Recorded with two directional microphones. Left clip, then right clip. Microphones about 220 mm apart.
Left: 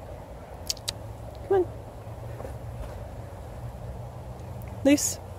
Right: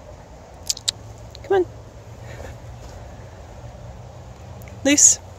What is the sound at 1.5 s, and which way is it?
Speech, 25° right (ahead or behind).